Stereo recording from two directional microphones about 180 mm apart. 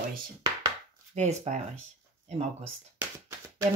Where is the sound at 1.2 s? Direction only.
40° right (ahead or behind).